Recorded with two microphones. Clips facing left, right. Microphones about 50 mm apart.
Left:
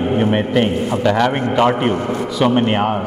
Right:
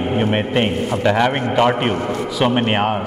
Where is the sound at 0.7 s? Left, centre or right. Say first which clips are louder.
Left 2 dB; centre.